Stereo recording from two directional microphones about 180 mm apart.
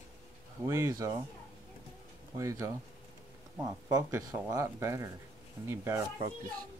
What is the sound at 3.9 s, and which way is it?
Speech, 15° right (ahead or behind).